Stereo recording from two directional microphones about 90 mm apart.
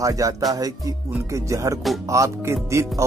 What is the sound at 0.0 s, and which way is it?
Speech, 40° right (ahead or behind).